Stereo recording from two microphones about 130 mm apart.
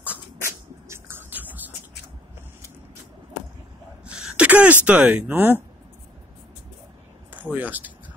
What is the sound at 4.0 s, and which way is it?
Sneeze, 5° right (ahead or behind).